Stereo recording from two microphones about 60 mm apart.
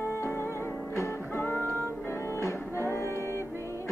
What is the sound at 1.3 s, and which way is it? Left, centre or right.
Music, left.